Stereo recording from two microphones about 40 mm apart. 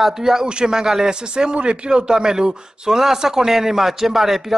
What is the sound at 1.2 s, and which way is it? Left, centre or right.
Speech, right.